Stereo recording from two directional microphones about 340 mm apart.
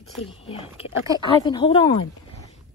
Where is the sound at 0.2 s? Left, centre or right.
Centre.